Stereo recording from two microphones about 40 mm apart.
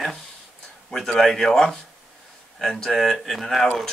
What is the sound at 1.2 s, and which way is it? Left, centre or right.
A man's voice, centre.